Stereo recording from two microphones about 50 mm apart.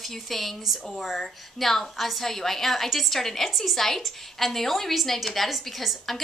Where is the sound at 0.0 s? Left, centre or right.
Centre.